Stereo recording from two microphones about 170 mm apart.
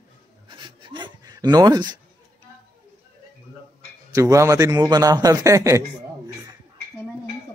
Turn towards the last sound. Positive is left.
turn(degrees=-20)  # may be behind; listen again after turning